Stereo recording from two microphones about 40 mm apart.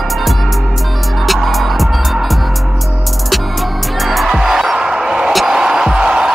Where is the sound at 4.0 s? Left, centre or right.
Centre; by 6.3 s right.